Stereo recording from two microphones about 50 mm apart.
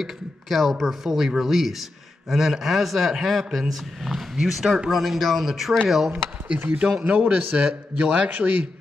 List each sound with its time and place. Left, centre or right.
0.0 s speech: centre
5.0 s speech: centre
7.0 s a man's voice: right